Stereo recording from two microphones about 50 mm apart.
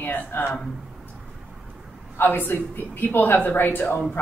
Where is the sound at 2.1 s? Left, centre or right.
Left.